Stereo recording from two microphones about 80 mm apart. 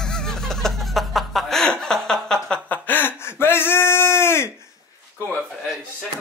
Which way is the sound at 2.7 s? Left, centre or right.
Left.